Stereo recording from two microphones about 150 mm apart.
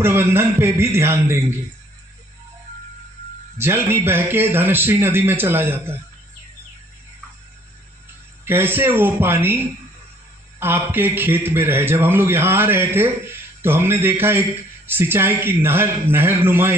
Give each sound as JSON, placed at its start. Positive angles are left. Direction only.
{"t": 0.0, "sound": "a man's voice", "side_deg": -15}
{"t": 3.5, "sound": "a man's voice", "side_deg": -15}
{"t": 8.5, "sound": "a man's voice", "side_deg": -15}
{"t": 10.6, "sound": "a man's voice", "side_deg": -15}